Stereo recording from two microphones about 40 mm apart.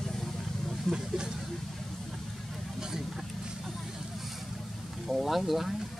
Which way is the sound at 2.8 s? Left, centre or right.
Centre.